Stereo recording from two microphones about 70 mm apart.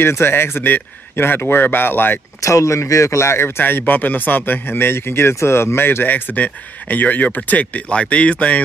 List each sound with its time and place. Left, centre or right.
0.0 s speech: left
2.4 s speech: left; by 8.6 s centre